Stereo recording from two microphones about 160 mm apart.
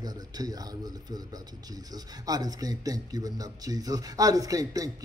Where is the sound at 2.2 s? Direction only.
25° right (ahead or behind).